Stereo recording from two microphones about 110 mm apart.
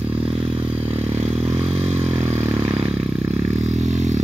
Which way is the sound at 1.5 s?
65° right (ahead or behind).